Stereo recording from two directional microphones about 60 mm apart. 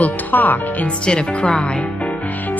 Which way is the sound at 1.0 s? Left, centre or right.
Centre.